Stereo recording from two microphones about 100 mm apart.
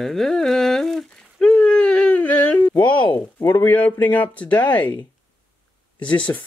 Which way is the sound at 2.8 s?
55° left (ahead or behind).